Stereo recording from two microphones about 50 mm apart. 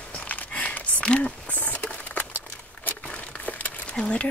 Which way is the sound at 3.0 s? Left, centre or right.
Left.